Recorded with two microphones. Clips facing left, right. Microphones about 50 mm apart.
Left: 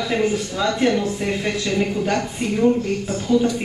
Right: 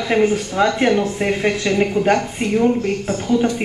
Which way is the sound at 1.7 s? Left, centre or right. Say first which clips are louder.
Right 2 dB; centre.